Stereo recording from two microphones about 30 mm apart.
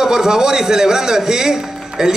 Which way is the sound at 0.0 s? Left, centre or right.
Centre.